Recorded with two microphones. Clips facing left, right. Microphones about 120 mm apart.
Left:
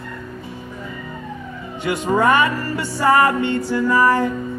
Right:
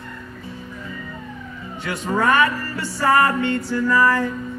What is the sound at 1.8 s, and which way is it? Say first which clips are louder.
Music: left 4 dB; 15° left (ahead or behind).